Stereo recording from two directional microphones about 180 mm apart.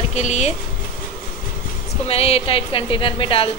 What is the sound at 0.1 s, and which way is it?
Speech, 40° left (ahead or behind).